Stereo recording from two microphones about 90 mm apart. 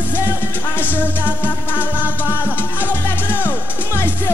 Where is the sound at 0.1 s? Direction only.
25° left (ahead or behind).